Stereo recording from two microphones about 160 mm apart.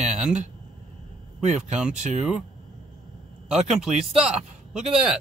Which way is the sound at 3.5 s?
5° right (ahead or behind).